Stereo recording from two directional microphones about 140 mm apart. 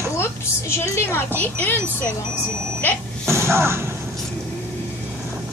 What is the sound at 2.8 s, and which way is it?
Speech, 15° left (ahead or behind).